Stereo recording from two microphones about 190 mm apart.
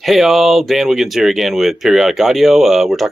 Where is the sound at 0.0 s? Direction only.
Centre (ahead or behind).